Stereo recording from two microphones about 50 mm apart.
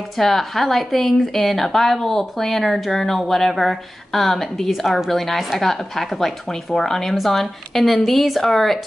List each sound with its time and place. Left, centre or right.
0.2 s a woman's voice: centre